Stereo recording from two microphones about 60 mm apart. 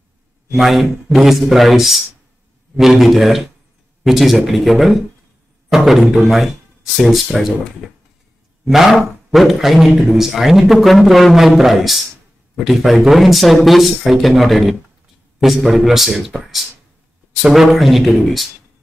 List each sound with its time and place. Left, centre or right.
0.6 s a man's voice: centre
8.6 s a man's voice: centre